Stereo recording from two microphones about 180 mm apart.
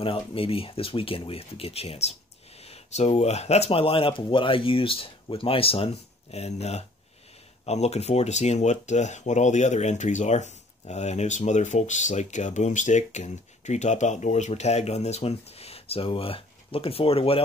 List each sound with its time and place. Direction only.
0.0 s speech: 30° left (ahead or behind)